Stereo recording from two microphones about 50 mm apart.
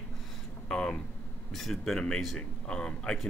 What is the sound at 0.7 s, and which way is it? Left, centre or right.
Speech, centre.